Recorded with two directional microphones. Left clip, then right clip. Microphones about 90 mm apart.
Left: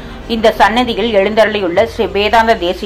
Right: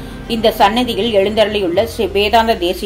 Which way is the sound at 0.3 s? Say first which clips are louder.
Left 2 dB; 20° right (ahead or behind).